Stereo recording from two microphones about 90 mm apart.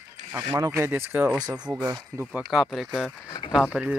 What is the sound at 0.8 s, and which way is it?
Speech, 25° right (ahead or behind).